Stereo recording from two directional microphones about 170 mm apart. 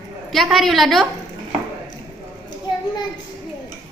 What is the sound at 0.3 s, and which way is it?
Speech, centre (ahead or behind).